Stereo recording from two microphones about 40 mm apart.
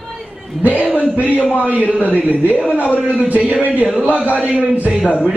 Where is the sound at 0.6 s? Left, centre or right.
Right.